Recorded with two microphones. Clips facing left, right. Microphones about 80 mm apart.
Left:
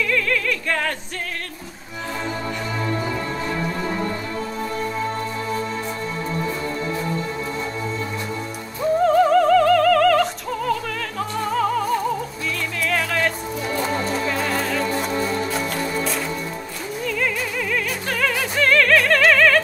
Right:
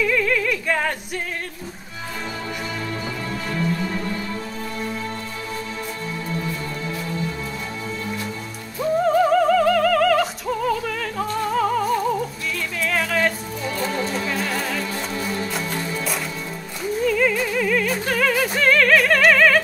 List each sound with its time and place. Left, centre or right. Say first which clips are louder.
0.0 s music: right 2 dB; centre
2.8 s music: left 4 dB; left
9.0 s opera: left 2 dB; centre
12.8 s music: right 1 dB; centre
13.7 s music: left 1 dB; left
14.4 s music: left 3 dB; centre
14.9 s music: left 5 dB; left
16.0 s music: left 3 dB; centre